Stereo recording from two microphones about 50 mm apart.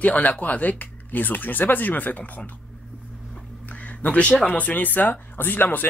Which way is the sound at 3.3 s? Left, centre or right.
Left.